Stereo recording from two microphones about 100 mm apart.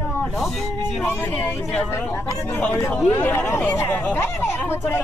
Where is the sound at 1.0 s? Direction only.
20° left (ahead or behind).